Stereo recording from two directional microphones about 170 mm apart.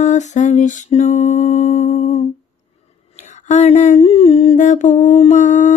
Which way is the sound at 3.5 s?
40° left (ahead or behind).